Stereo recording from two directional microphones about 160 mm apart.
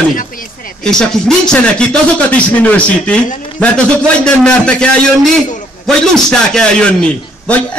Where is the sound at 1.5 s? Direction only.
5° left (ahead or behind).